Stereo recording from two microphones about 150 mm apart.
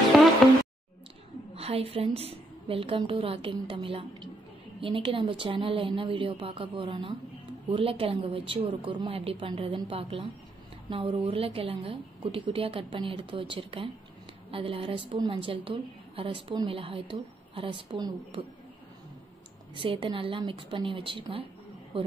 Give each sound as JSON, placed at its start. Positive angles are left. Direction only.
{"t": 0.1, "sound": "music", "side_deg": 0}
{"t": 1.5, "sound": "a woman's voice", "side_deg": -40}
{"t": 19.7, "sound": "a woman's voice", "side_deg": -35}